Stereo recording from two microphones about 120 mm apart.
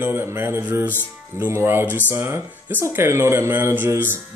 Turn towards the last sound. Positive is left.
turn(degrees=-15)  # may be behind; listen again after turning